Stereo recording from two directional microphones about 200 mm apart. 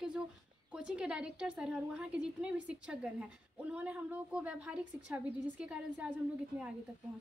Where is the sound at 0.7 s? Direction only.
5° right (ahead or behind).